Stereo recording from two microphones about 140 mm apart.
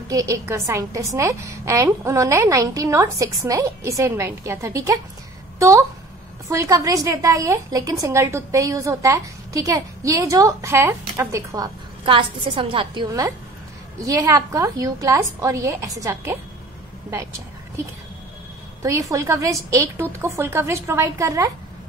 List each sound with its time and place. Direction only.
0.1 s a woman's voice: 20° right (ahead or behind)
12.0 s a woman's voice: 35° right (ahead or behind)
14.0 s a woman's voice: 25° right (ahead or behind)
18.8 s a woman's voice: 20° right (ahead or behind)